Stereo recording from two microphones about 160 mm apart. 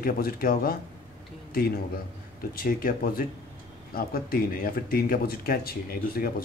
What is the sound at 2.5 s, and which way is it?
Speech, 65° left (ahead or behind).